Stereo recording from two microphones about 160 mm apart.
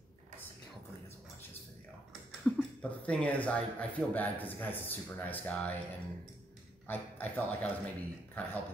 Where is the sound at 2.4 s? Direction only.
5° left (ahead or behind).